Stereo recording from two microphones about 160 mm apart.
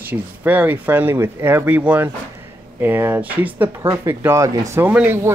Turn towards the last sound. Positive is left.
turn(degrees=-10)  # may be behind; listen again after turning